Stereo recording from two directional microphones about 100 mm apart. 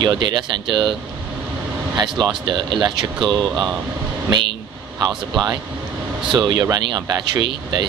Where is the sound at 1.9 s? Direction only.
50° right (ahead or behind).